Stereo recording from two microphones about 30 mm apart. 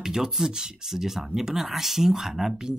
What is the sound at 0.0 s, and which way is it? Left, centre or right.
Speech, centre.